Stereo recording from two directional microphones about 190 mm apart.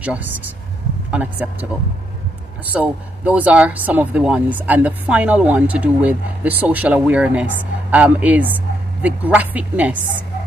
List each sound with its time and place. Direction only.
0.0 s speech: 10° right (ahead or behind)
2.7 s speech: 10° right (ahead or behind)